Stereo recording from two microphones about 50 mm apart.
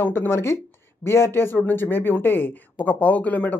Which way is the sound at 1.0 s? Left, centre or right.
Left.